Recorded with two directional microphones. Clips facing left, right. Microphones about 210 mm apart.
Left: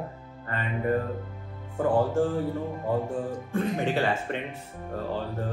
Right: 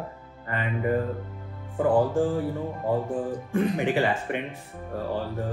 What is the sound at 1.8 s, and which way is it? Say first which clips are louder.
Speech: right 2 dB; 15° right (ahead or behind).